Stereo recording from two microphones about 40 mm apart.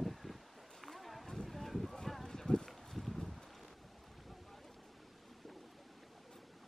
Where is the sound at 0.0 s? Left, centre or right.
Centre.